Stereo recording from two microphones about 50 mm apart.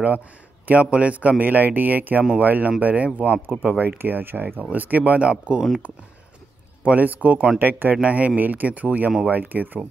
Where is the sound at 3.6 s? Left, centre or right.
Right.